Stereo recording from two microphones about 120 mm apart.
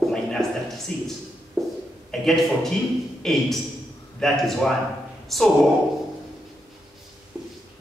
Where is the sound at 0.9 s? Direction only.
5° left (ahead or behind).